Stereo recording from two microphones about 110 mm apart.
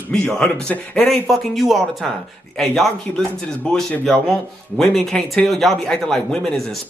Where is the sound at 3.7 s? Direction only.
5° left (ahead or behind).